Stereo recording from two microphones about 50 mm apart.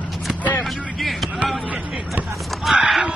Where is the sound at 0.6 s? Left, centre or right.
Centre.